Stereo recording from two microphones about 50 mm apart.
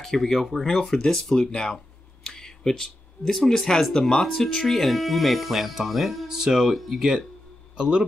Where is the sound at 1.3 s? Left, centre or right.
Centre.